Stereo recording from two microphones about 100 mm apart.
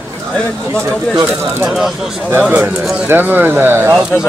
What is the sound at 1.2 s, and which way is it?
Speech, 20° right (ahead or behind).